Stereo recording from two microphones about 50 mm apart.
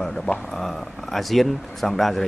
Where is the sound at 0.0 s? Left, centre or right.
Centre.